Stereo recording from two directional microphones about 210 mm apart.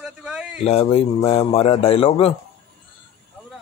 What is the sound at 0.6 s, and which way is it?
Speech, 30° left (ahead or behind).